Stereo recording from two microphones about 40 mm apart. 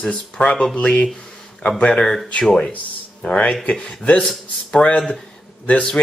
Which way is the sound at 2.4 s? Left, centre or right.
Centre.